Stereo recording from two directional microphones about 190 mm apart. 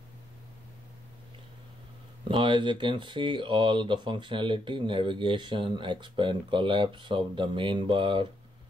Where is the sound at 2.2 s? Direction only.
25° right (ahead or behind).